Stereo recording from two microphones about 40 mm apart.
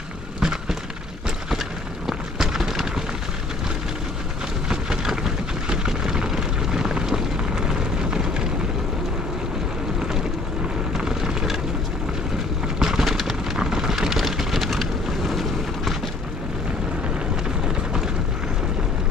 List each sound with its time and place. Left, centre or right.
0.4 s a sound: centre
2.0 s a sound: centre
4.6 s vehicle: centre
10.9 s vehicle: centre
12.7 s vehicle: centre
13.0 s vehicle: centre